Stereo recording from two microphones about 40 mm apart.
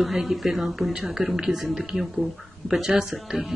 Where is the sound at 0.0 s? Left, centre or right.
Centre.